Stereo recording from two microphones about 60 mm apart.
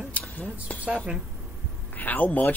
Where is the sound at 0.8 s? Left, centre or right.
Centre.